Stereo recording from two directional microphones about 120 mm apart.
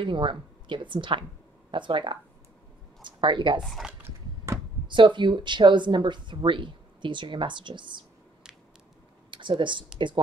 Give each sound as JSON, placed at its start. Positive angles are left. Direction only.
{"t": 0.0, "sound": "a woman's voice", "side_deg": -45}
{"t": 4.8, "sound": "speech", "side_deg": -40}
{"t": 9.3, "sound": "speech", "side_deg": -40}